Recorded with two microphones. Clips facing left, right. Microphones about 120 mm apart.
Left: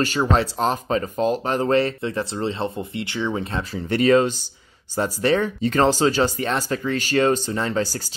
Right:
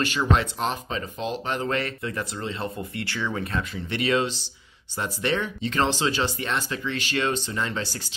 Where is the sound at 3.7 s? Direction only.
40° left (ahead or behind).